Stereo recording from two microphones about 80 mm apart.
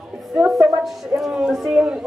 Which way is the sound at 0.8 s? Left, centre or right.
Centre.